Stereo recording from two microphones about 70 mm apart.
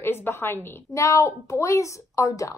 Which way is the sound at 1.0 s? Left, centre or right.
Left.